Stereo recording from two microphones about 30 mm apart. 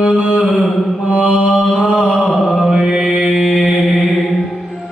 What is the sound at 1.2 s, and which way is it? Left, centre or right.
Mantra, right.